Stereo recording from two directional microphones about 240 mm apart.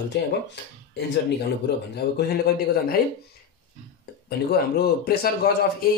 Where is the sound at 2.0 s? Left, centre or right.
Left.